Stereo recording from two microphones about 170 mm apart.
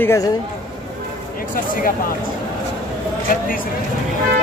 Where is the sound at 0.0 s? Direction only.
15° left (ahead or behind).